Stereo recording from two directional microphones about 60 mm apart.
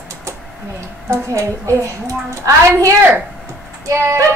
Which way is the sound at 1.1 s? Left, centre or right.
Right.